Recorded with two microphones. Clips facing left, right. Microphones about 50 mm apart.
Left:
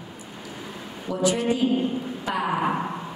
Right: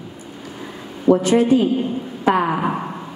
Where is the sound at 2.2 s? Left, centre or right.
Right.